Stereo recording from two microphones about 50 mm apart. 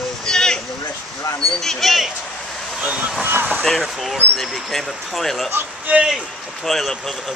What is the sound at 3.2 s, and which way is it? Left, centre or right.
Speech, right.